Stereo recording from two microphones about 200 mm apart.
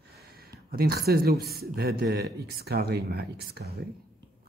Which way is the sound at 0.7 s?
50° right (ahead or behind).